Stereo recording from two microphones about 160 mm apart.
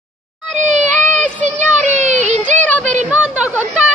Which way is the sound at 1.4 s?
50° right (ahead or behind).